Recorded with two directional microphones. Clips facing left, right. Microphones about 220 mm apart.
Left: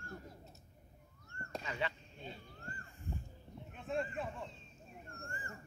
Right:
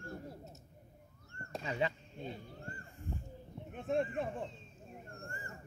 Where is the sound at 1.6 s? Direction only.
30° right (ahead or behind).